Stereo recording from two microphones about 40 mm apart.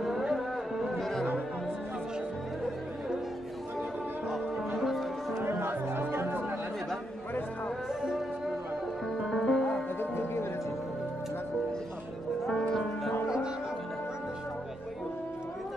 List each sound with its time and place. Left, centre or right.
0.0 s music: centre
0.9 s music: centre
4.7 s music: centre
5.4 s music: right
9.2 s music: centre
9.9 s music: left
12.4 s music: centre